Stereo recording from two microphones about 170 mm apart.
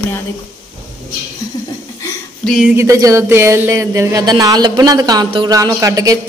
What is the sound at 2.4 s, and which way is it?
Speech, centre (ahead or behind).